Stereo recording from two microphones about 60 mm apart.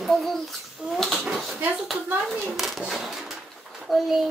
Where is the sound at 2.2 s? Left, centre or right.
Centre.